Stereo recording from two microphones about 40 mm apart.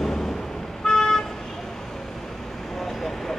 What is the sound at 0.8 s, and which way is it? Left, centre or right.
Vehicle, centre.